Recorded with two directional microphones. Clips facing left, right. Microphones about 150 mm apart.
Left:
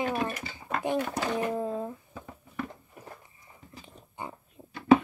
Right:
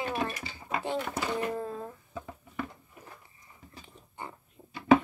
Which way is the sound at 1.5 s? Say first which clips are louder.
Left 4 dB; 15° left (ahead or behind).